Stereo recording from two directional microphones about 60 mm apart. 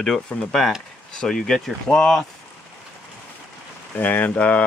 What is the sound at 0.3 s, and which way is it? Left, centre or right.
Speech, centre.